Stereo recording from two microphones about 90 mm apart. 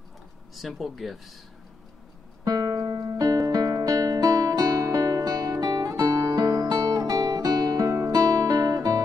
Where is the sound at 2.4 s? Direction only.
45° right (ahead or behind).